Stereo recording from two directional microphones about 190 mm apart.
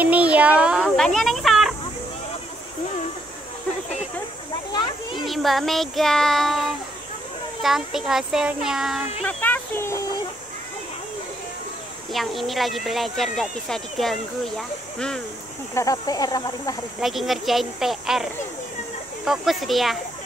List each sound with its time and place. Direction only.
0.0 s a sound: 5° right (ahead or behind)
5.1 s speech: centre (ahead or behind)
12.1 s speech: centre (ahead or behind)
15.7 s speech: 15° left (ahead or behind)
17.0 s speech: centre (ahead or behind)